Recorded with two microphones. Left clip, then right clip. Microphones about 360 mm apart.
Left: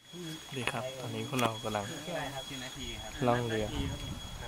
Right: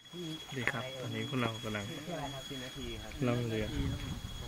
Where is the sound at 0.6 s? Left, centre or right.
Centre.